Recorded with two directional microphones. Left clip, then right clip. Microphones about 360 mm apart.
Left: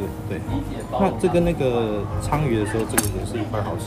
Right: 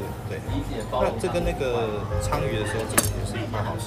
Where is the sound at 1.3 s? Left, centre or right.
Centre.